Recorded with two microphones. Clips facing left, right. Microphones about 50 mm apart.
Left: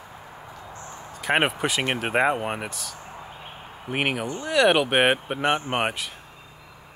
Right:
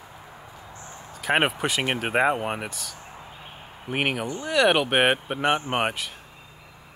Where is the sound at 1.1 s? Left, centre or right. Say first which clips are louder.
Even; centre.